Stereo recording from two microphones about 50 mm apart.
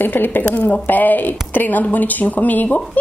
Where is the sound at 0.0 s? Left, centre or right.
Left.